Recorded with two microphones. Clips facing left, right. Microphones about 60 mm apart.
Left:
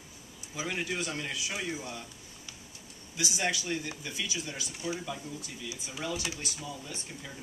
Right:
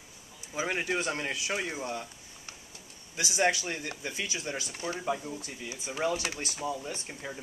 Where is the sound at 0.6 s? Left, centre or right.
Right.